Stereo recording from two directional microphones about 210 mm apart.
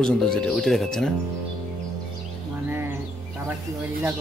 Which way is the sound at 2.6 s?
10° right (ahead or behind).